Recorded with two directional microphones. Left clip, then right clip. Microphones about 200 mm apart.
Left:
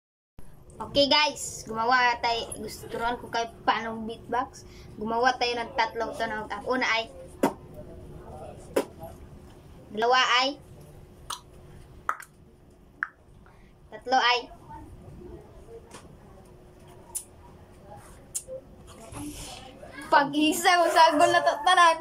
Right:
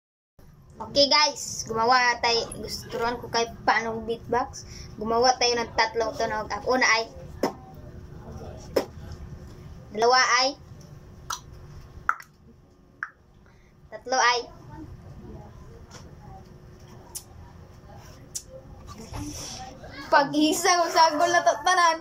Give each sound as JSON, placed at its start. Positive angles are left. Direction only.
{"t": 0.9, "sound": "a woman's voice", "side_deg": 5}
{"t": 9.9, "sound": "a woman's voice", "side_deg": 5}
{"t": 14.0, "sound": "a woman's voice", "side_deg": 5}
{"t": 20.1, "sound": "a woman's voice", "side_deg": 0}